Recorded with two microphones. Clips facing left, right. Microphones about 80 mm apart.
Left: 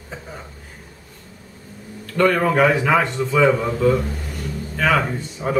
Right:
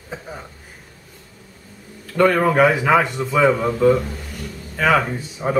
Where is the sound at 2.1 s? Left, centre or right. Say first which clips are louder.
Right 1 dB; centre.